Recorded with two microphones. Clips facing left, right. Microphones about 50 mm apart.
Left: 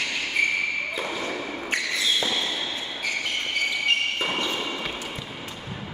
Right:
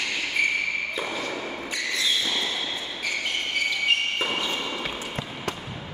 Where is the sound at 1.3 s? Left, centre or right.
Centre.